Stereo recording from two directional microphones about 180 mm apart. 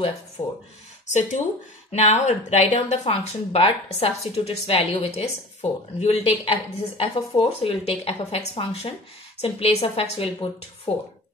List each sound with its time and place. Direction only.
0.4 s speech: 15° left (ahead or behind)
1.0 s speech: 40° left (ahead or behind)